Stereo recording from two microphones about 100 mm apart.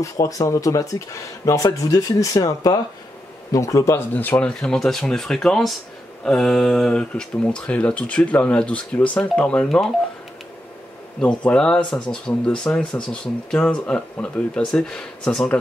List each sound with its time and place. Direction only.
0.0 s speech: 35° left (ahead or behind)
4.1 s speech: 15° left (ahead or behind)
11.1 s speech: 10° left (ahead or behind)